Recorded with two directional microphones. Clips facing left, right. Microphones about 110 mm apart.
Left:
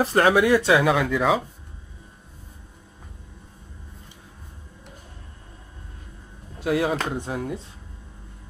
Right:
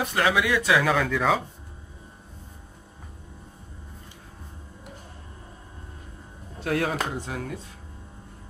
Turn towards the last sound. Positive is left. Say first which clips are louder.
# left 4 dB
turn(degrees=25)  # may be behind; listen again after turning